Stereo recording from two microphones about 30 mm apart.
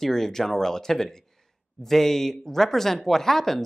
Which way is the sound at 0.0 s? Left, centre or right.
Centre.